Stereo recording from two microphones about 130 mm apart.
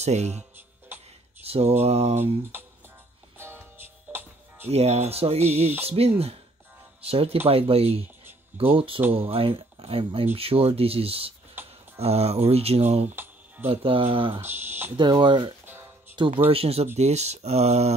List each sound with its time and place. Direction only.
0.0 s speech: 60° right (ahead or behind)
0.9 s a sound: 15° right (ahead or behind)
1.4 s speech: 50° right (ahead or behind)
3.3 s music: 15° right (ahead or behind)
4.6 s speech: 55° right (ahead or behind)
11.6 s a sound: 15° right (ahead or behind)
12.0 s speech: 55° right (ahead or behind)
13.1 s music: 15° right (ahead or behind)
13.7 s speech: 45° right (ahead or behind)
14.4 s speech: 15° right (ahead or behind)
15.0 s speech: 35° right (ahead or behind)
15.6 s music: 15° right (ahead or behind)
16.4 s speech: 50° right (ahead or behind)